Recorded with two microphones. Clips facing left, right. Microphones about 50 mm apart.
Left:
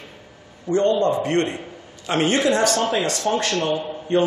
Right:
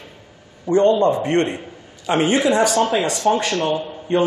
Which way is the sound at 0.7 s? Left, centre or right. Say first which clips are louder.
Right 4 dB; right.